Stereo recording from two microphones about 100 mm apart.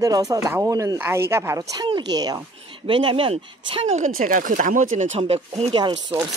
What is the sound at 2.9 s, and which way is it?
Speech, 60° right (ahead or behind).